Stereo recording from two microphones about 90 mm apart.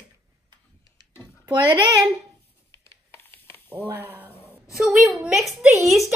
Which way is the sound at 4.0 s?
20° right (ahead or behind).